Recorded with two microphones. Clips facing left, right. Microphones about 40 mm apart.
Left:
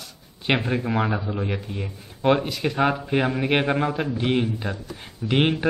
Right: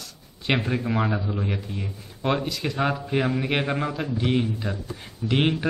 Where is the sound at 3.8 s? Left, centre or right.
Left.